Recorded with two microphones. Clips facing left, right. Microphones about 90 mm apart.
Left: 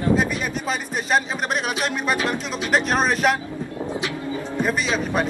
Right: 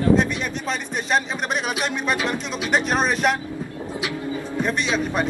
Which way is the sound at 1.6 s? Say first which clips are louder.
Even; centre (ahead or behind).